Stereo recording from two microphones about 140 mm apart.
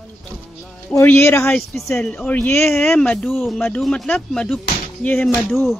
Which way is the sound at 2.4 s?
15° left (ahead or behind).